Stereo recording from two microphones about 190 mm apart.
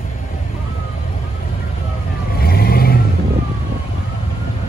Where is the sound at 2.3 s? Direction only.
55° left (ahead or behind).